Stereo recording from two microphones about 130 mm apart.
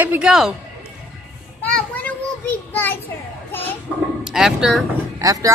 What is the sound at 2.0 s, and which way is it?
Child singing, 15° left (ahead or behind).